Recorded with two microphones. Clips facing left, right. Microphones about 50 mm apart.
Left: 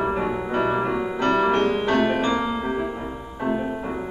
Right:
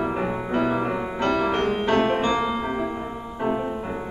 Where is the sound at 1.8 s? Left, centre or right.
Right.